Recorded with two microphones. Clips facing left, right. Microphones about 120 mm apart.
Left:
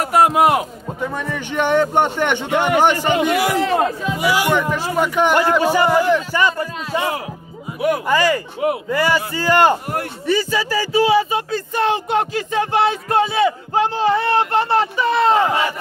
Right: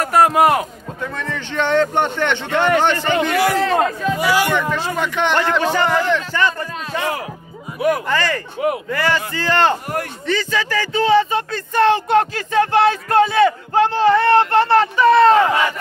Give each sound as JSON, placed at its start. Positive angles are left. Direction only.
{"t": 0.0, "sound": "a sound", "side_deg": 10}
{"t": 0.5, "sound": "speech", "side_deg": 15}
{"t": 14.6, "sound": "speech", "side_deg": -70}
{"t": 15.2, "sound": "speech", "side_deg": 15}